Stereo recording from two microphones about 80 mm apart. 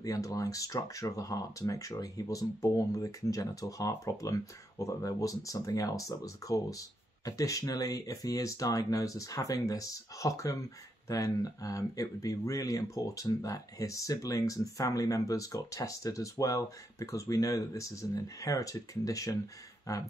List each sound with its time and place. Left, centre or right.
0.0 s speech: left